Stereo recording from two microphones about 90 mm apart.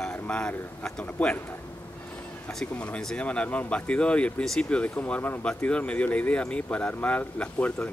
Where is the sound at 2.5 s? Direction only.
15° left (ahead or behind).